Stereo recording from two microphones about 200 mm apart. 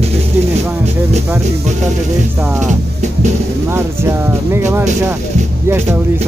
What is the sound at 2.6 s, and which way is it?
Music, 35° right (ahead or behind).